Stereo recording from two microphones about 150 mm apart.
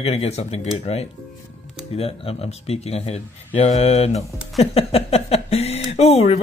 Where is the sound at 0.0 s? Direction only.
45° left (ahead or behind).